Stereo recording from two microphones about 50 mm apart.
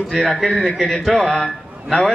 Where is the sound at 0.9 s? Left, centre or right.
Centre.